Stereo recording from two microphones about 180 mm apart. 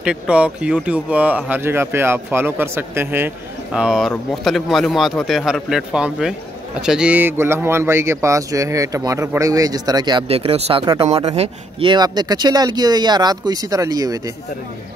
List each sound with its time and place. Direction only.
0.0 s speech: 5° right (ahead or behind)